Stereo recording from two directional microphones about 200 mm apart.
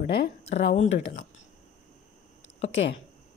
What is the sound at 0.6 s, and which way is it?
Speech, 60° left (ahead or behind).